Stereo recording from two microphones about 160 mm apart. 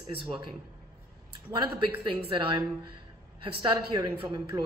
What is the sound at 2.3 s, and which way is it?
A man's voice, 30° right (ahead or behind).